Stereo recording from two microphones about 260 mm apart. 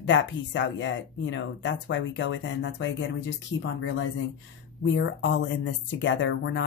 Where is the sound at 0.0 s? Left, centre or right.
Left.